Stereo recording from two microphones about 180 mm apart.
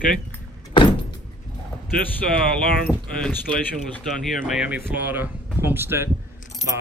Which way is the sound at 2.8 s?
10° left (ahead or behind).